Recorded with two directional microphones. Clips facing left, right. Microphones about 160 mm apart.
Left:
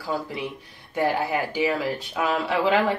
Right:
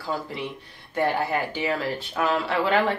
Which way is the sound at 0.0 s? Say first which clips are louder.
Left 1 dB; 10° left (ahead or behind).